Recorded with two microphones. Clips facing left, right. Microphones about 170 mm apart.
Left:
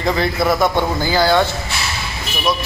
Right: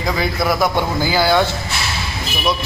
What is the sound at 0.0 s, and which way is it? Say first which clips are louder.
A man's voice: left 2 dB; 5° right (ahead or behind).